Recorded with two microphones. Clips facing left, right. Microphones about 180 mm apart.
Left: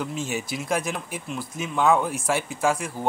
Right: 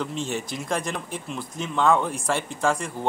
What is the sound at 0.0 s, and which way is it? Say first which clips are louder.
Speech: even; 5° left (ahead or behind).